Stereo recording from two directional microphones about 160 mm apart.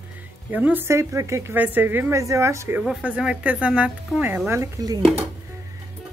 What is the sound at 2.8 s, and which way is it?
A woman's voice, 5° right (ahead or behind).